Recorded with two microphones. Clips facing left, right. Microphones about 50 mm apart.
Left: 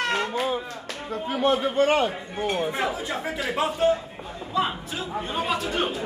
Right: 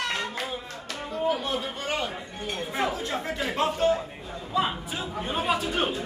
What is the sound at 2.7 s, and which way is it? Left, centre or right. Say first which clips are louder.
A man's voice: left 1 dB; centre.